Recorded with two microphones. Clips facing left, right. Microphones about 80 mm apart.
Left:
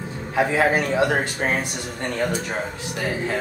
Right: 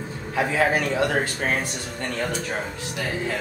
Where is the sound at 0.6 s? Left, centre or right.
Left.